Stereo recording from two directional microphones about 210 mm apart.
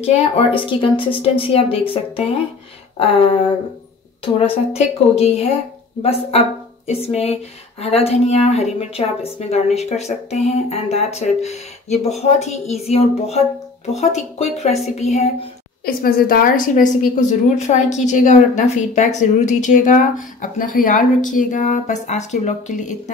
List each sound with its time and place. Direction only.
0.0 s a woman's voice: 30° left (ahead or behind)
4.4 s a woman's voice: 30° left (ahead or behind)
15.8 s a woman's voice: 45° left (ahead or behind)